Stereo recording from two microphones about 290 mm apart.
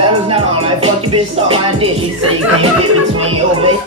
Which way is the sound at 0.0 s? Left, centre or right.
Centre.